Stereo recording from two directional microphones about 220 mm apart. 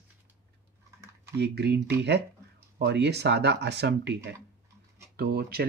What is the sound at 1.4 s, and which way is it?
Speech, 50° right (ahead or behind).